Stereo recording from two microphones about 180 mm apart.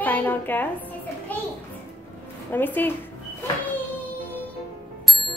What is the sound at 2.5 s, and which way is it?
A woman's voice, 10° left (ahead or behind).